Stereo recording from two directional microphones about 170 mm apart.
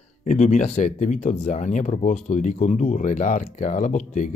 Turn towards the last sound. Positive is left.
turn(degrees=45)  # may be behind; listen again after turning